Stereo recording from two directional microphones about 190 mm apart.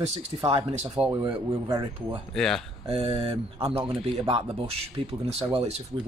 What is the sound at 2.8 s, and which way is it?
Speech, 30° right (ahead or behind).